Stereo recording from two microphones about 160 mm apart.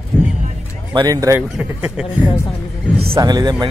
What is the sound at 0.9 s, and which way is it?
Speech, 25° right (ahead or behind).